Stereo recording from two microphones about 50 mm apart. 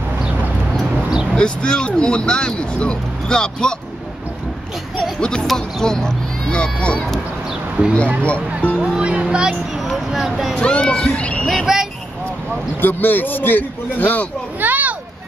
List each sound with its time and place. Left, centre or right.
1.3 s speech: centre
5.2 s speech: centre
7.8 s speech: right
8.7 s music: centre
10.1 s speech: centre
10.6 s speech: left
11.6 s vehicle: centre
12.8 s a man's voice: left
14.6 s a sound: right